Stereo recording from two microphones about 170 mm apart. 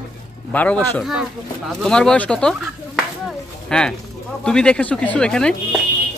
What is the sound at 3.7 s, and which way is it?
Speech, 5° left (ahead or behind).